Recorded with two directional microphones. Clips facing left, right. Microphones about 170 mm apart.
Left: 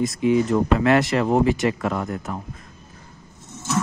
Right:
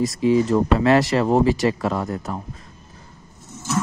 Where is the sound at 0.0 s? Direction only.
30° right (ahead or behind).